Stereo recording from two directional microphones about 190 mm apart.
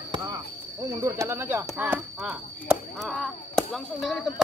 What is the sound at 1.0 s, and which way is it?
Speech, 15° right (ahead or behind).